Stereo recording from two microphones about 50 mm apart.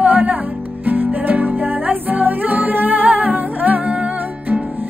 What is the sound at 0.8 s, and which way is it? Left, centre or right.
Music, right.